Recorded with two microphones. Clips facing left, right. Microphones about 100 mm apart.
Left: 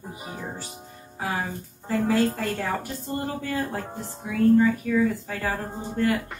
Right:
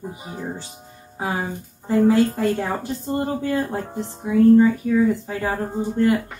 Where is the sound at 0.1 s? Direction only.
20° right (ahead or behind).